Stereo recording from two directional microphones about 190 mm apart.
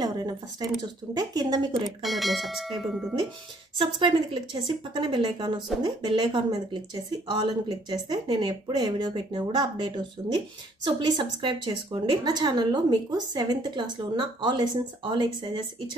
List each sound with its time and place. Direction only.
0.0 s a woman's voice: 20° right (ahead or behind)
2.0 s speech: centre (ahead or behind)
3.7 s a woman's voice: 25° right (ahead or behind)